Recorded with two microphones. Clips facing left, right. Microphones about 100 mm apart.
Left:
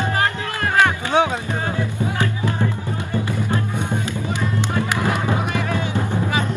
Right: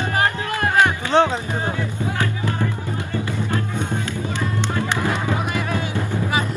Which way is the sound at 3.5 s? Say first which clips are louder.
Even; 15° left (ahead or behind).